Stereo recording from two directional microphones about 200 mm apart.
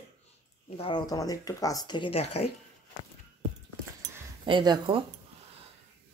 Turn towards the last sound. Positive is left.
turn(degrees=-25)  # may be behind; listen again after turning